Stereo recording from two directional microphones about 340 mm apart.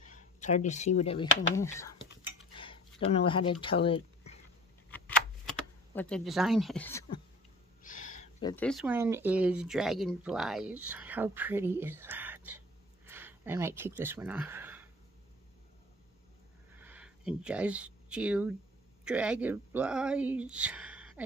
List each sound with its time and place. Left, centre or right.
0.0 s speech: left
2.6 s a sound: centre
3.6 s speech: centre
4.9 s typewriter: centre
7.8 s speech: left; by 14.9 s centre
16.7 s a sound: centre
19.0 s speech: centre